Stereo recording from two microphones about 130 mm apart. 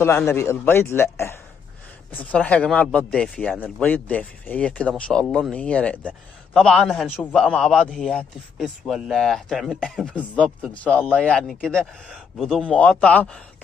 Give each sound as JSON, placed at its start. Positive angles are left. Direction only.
{"t": 0.3, "sound": "a man's voice", "side_deg": 20}
{"t": 10.0, "sound": "speech", "side_deg": 10}